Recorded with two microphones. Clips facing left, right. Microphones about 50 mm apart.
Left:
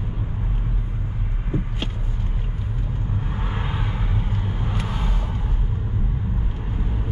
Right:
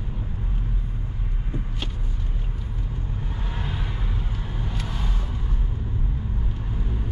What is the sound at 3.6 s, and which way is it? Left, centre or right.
Vehicle, centre.